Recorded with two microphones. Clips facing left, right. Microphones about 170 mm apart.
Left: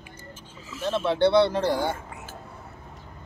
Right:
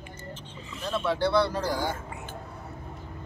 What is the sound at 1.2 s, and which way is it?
Speech, 25° left (ahead or behind).